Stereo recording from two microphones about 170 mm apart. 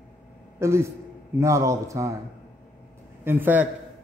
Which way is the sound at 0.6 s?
15° right (ahead or behind).